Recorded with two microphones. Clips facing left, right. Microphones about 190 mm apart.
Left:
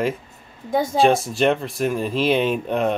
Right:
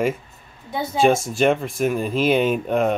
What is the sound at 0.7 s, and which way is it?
Speech, 45° left (ahead or behind).